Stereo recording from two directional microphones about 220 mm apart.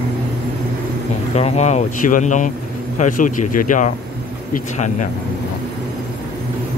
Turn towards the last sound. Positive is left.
turn(degrees=35)  # may be behind; listen again after turning